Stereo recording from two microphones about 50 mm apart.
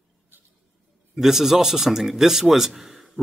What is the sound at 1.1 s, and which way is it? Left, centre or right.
Speech, centre.